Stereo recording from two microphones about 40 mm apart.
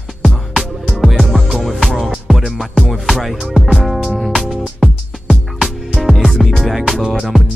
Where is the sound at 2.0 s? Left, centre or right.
Centre.